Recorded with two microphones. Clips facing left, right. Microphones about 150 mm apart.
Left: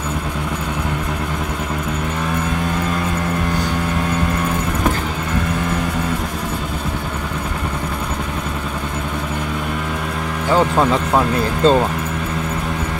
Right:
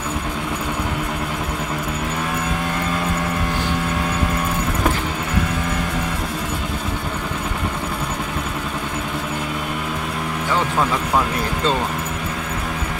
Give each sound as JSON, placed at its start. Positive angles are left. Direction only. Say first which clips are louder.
{"t": 10.5, "sound": "speech", "louder": "left 6 dB", "side_deg": 30}